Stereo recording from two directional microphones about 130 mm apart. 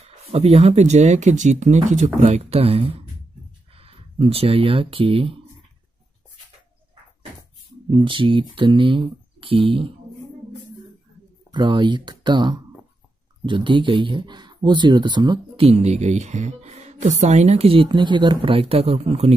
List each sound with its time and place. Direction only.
0.3 s speech: 50° right (ahead or behind)
7.9 s speech: 40° right (ahead or behind)
11.5 s speech: 35° right (ahead or behind); by 19.3 s 50° right (ahead or behind)